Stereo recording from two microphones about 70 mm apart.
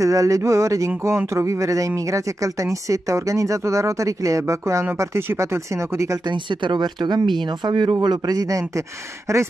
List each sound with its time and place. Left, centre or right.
0.0 s speech: right
6.8 s speech: right